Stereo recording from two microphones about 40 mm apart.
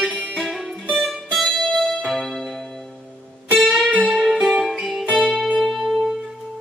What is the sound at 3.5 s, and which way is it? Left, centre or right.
Music, centre.